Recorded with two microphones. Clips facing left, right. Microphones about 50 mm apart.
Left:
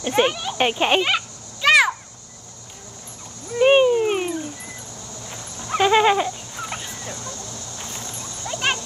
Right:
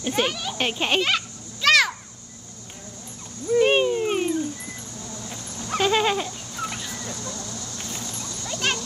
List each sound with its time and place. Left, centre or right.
0.0 s a child's voice: centre
3.5 s dog: centre
5.7 s dog: centre
6.7 s fowl: left
8.0 s dog: centre